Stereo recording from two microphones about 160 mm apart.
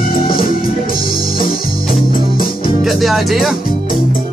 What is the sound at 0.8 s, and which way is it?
Music, 65° left (ahead or behind).